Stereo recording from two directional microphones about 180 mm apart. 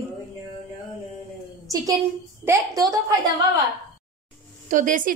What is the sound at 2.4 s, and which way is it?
Speech, 20° right (ahead or behind).